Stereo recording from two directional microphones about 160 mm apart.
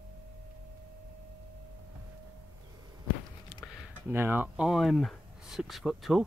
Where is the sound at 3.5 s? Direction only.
5° right (ahead or behind).